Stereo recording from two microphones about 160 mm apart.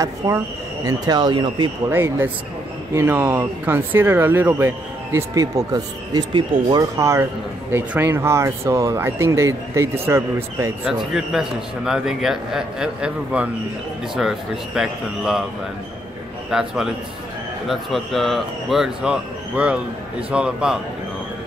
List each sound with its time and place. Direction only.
0.2 s speech: 20° right (ahead or behind)
1.9 s speech: 15° right (ahead or behind)
11.1 s speech: 5° right (ahead or behind)
16.4 s speech: 5° right (ahead or behind)